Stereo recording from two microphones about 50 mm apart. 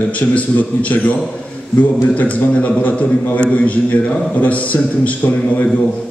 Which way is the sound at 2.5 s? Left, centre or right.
Left.